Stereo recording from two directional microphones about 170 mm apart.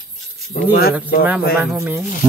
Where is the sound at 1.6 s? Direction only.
5° right (ahead or behind).